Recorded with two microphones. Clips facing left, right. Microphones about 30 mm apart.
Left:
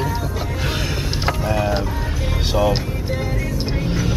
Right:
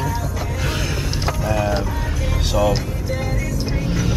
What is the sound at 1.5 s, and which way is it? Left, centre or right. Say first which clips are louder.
Speech: right 2 dB; centre.